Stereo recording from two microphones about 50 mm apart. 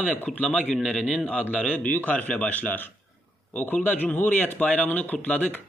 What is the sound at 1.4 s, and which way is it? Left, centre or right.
A man's voice, left.